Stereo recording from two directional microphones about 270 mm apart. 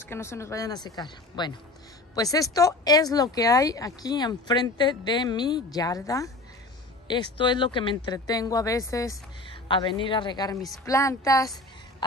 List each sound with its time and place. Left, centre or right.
0.1 s speech: centre